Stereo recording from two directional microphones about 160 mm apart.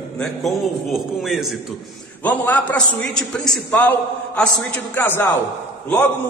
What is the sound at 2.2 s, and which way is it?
A man's voice, 10° left (ahead or behind).